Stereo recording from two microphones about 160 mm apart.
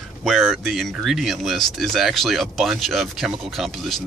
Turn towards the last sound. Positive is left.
turn(degrees=0)  # may be behind; listen again after turning